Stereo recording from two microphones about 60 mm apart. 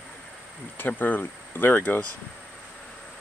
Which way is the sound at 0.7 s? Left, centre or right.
Left.